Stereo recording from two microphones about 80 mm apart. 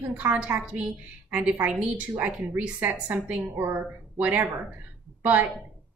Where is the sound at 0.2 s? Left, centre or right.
Centre.